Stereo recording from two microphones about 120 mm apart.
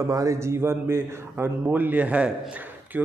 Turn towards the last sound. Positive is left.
turn(degrees=-10)  # may be behind; listen again after turning